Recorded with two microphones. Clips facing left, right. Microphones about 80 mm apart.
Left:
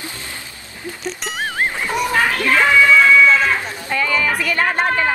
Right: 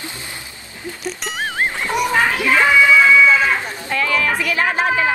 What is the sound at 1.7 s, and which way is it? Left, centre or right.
Children playing, centre.